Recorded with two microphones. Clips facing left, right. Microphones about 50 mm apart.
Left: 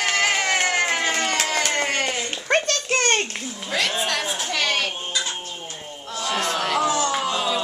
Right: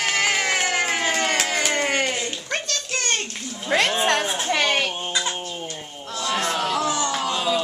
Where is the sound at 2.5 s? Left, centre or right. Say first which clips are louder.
Left 6 dB; left.